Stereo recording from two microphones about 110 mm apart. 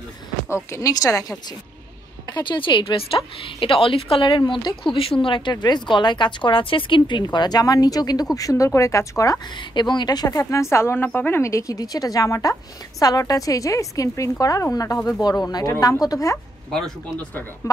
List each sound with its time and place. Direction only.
0.7 s speech: 30° left (ahead or behind)
2.2 s a woman's voice: 45° left (ahead or behind)
9.6 s a woman's voice: 40° left (ahead or behind)
10.4 s a woman's voice: 25° left (ahead or behind)
16.7 s speech: 5° left (ahead or behind)